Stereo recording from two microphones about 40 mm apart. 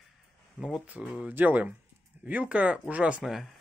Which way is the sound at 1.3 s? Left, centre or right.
Right.